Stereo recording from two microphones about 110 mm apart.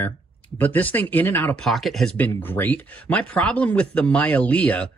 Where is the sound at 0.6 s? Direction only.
15° left (ahead or behind).